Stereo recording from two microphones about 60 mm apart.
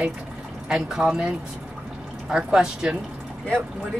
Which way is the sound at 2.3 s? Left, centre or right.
Centre.